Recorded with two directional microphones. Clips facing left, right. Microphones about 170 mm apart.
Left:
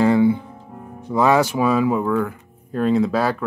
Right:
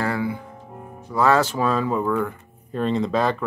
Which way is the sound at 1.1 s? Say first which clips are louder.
Left 2 dB; 15° left (ahead or behind).